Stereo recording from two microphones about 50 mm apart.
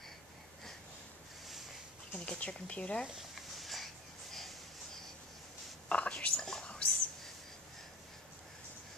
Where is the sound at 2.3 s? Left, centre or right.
Left.